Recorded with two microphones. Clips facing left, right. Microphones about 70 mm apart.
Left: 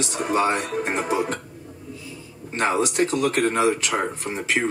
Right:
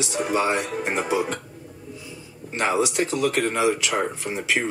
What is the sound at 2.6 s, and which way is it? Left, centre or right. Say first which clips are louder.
Speech: left 1 dB; left.